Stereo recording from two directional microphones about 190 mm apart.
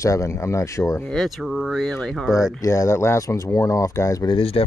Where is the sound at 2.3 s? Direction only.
15° left (ahead or behind).